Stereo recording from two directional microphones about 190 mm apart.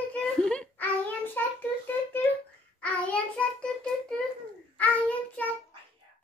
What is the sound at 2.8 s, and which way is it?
Child singing, 5° left (ahead or behind).